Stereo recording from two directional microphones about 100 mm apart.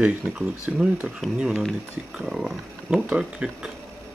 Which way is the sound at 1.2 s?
Centre (ahead or behind).